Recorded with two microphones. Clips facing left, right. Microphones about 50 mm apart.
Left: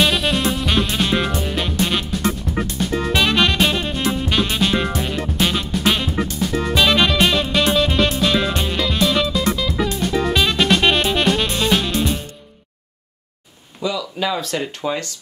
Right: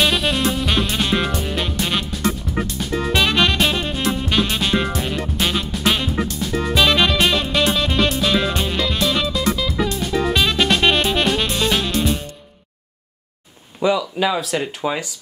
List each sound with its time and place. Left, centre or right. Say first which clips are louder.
0.0 s music: even; centre
13.7 s a sound: right 5 dB; right
14.2 s speech: left 1 dB; centre